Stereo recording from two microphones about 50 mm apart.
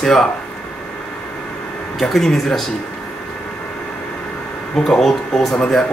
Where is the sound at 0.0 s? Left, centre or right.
Centre.